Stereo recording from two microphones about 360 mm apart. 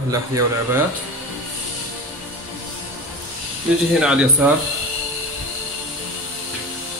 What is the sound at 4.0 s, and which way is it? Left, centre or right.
Speech, centre.